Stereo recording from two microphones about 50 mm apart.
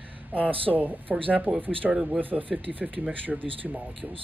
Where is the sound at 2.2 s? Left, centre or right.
Right.